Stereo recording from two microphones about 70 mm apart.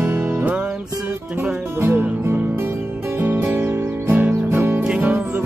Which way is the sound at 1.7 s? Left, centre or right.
Right.